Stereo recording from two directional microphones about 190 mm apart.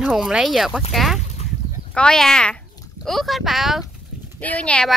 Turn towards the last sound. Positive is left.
turn(degrees=5)  # may be behind; listen again after turning